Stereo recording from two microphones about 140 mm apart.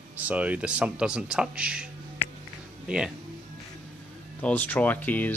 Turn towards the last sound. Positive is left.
turn(degrees=15)  # may be behind; listen again after turning